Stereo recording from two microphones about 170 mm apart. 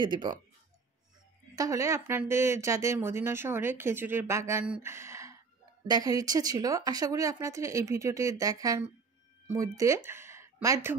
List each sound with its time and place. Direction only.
0.0 s speech: 25° right (ahead or behind)
1.5 s speech: 20° right (ahead or behind)
4.8 s a sound: 15° right (ahead or behind)
5.9 s speech: 20° right (ahead or behind)